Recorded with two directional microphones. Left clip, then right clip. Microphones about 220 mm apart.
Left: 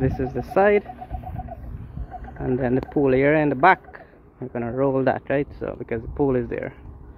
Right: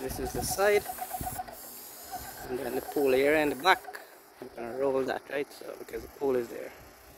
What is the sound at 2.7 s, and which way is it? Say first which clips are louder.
Speech: left 5 dB; centre (ahead or behind).